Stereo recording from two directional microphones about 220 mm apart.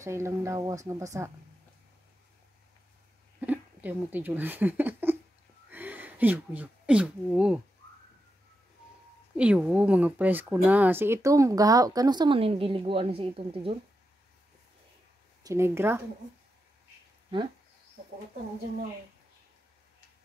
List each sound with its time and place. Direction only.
0.0 s speech: 10° right (ahead or behind)
3.3 s speech: 5° right (ahead or behind)
9.4 s speech: 5° right (ahead or behind); by 13.7 s 25° right (ahead or behind)
15.4 s speech: 10° right (ahead or behind)